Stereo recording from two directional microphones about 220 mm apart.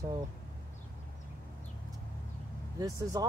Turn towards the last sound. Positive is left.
turn(degrees=-15)  # may be behind; listen again after turning